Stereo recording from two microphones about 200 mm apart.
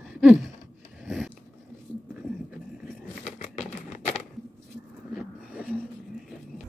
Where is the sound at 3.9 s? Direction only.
35° left (ahead or behind).